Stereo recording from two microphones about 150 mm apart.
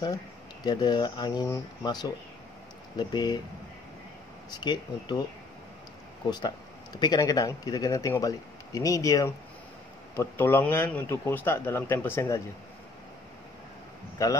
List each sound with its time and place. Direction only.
0.7 s speech: 30° left (ahead or behind)
4.5 s speech: 30° left (ahead or behind)
6.3 s a man's voice: 30° left (ahead or behind)
14.2 s speech: 20° left (ahead or behind)